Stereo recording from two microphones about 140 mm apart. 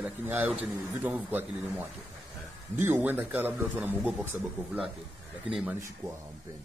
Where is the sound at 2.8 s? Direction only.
15° right (ahead or behind).